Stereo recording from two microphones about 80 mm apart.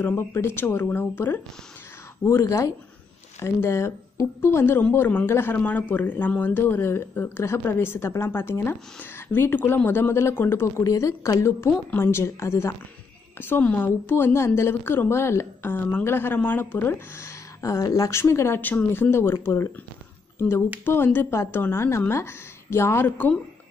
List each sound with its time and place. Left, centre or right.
0.0 s a woman's voice: left
13.4 s speech: left
17.6 s speech: left
18.2 s a woman's voice: left
23.0 s speech: left